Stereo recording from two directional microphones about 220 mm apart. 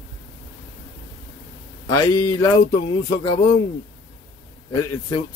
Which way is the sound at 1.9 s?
15° left (ahead or behind).